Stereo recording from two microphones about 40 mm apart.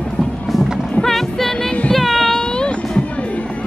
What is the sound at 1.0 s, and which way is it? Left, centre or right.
Music, centre.